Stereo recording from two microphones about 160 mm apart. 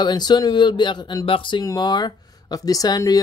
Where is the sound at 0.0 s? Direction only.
25° left (ahead or behind).